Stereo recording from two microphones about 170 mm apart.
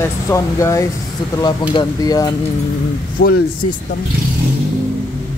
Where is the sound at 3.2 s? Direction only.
65° left (ahead or behind).